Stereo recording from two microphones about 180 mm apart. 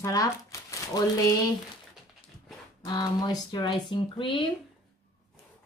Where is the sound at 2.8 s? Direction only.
25° left (ahead or behind).